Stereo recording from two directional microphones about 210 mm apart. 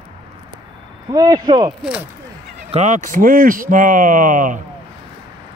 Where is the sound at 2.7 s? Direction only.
35° right (ahead or behind).